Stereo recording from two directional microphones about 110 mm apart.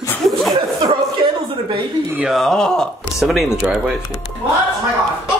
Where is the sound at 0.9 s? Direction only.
50° right (ahead or behind).